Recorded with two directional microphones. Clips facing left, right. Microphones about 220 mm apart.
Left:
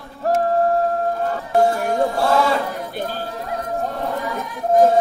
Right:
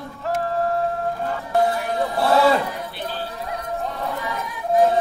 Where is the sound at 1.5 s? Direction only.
45° left (ahead or behind).